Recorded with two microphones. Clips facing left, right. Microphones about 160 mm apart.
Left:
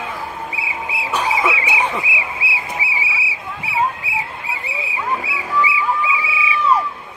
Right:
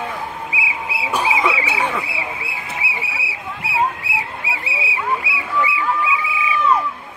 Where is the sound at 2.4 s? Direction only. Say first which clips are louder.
Left 4 dB; 50° right (ahead or behind).